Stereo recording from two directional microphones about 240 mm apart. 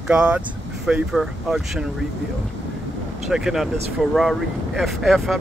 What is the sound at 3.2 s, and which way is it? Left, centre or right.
Speech, centre.